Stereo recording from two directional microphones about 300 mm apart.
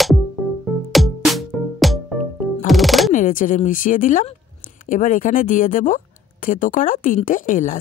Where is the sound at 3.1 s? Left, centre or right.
Left.